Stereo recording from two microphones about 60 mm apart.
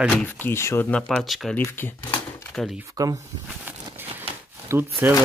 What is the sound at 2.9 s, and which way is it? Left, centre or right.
Speech, right.